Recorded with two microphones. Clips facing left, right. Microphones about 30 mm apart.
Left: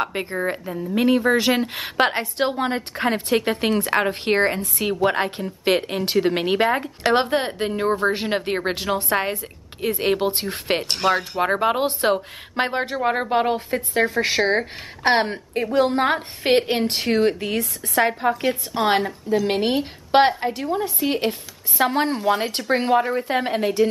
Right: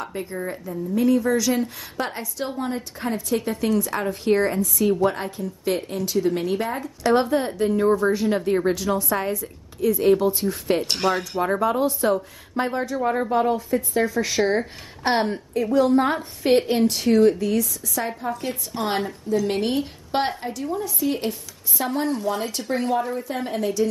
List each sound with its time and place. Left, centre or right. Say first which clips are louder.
0.0 s a woman's voice: left 5 dB; left
10.9 s speech: left 2 dB; centre
11.3 s a woman's voice: left 1 dB; left
14.6 s a woman's voice: left 3 dB; left
15.5 s a woman's voice: right 1 dB; left
18.3 s a woman's voice: left 6 dB; left